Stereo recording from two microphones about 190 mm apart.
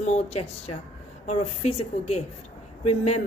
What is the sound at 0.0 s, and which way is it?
A woman's voice, 35° left (ahead or behind).